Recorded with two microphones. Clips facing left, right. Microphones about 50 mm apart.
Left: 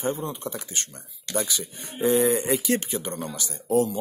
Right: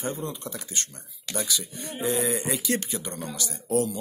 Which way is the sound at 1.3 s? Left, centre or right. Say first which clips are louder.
Left 3 dB; left.